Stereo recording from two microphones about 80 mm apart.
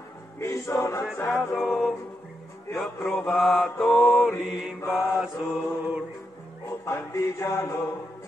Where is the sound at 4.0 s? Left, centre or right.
Centre.